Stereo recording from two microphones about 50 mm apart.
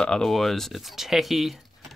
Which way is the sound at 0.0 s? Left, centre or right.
Centre.